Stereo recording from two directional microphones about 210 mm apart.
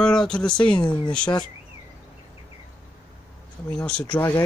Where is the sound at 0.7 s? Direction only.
20° left (ahead or behind).